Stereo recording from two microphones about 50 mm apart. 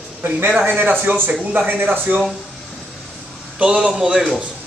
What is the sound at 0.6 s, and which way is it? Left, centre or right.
Speech, right.